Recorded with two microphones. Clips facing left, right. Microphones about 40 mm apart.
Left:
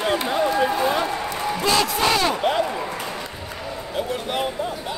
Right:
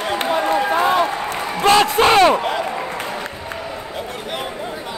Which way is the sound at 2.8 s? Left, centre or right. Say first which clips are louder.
Right 3 dB; right.